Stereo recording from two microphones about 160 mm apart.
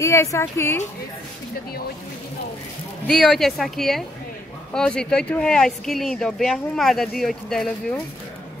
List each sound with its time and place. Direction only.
0.0 s speech: 20° left (ahead or behind)
3.1 s speech: centre (ahead or behind)